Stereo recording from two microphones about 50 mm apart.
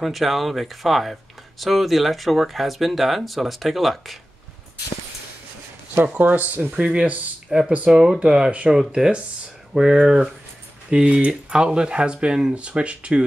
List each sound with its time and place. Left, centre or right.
0.0 s speech: centre
6.1 s speech: right
6.8 s speech: centre
8.2 s speech: right
8.6 s speech: centre